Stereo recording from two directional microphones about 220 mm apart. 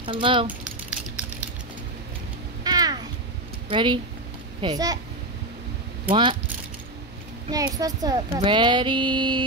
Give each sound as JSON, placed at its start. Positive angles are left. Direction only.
{"t": 0.0, "sound": "child singing", "side_deg": -25}
{"t": 2.6, "sound": "a sound", "side_deg": -15}
{"t": 3.6, "sound": "speech", "side_deg": -20}
{"t": 4.6, "sound": "child singing", "side_deg": -20}
{"t": 6.0, "sound": "speech", "side_deg": -20}
{"t": 7.4, "sound": "child singing", "side_deg": -15}